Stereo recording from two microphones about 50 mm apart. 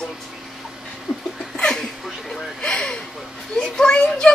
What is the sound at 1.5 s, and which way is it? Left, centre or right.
Speech, centre.